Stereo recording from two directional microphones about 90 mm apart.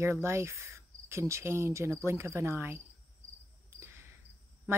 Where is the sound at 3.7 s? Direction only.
30° right (ahead or behind).